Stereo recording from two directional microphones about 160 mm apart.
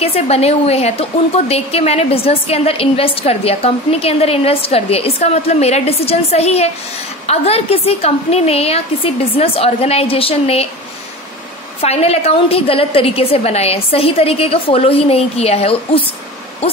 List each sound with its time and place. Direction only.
0.0 s a woman's voice: 40° left (ahead or behind)
11.8 s a woman's voice: 40° left (ahead or behind)